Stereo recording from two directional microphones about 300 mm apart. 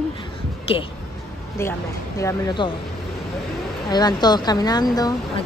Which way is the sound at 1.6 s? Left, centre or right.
Centre.